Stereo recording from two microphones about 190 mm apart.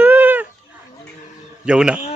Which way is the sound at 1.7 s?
5° right (ahead or behind).